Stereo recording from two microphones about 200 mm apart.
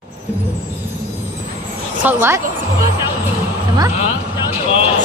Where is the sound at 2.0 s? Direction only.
10° right (ahead or behind).